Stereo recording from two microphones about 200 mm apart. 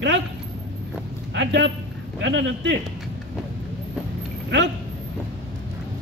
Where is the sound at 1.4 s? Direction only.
65° right (ahead or behind).